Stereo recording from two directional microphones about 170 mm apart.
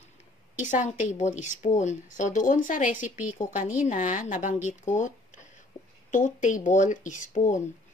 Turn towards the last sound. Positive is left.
turn(degrees=50)  # may be behind; listen again after turning